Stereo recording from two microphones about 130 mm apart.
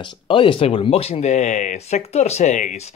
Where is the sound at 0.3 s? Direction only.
40° left (ahead or behind); by 2.8 s 70° left (ahead or behind).